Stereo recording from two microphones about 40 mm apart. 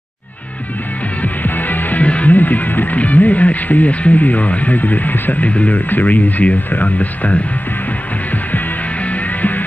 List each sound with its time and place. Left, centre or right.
1.2 s music: left
2.3 s music: left
5.4 s speech: left
8.3 s music: left